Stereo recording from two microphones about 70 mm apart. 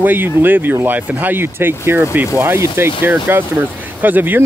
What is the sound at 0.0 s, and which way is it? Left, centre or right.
Speech, right.